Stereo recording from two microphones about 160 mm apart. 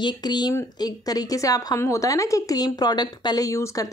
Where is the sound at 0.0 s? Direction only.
25° left (ahead or behind).